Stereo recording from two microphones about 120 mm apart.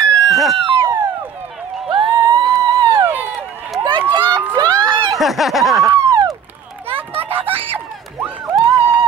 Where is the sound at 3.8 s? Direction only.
40° right (ahead or behind).